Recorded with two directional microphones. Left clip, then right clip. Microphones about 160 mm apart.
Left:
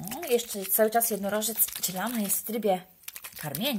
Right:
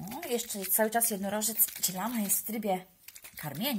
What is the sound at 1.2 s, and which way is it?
Speech, 5° left (ahead or behind).